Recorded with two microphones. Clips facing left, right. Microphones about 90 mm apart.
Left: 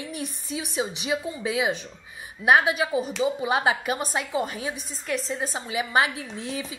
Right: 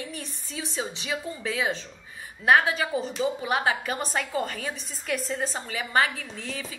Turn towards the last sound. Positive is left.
turn(degrees=20)  # may be behind; listen again after turning